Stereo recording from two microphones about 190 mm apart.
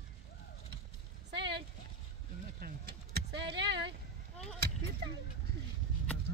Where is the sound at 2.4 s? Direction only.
50° right (ahead or behind).